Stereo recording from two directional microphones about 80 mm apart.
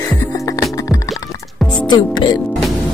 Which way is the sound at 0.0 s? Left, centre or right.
Left.